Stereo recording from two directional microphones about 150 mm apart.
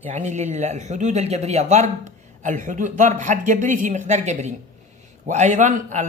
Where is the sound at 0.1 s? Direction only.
50° right (ahead or behind).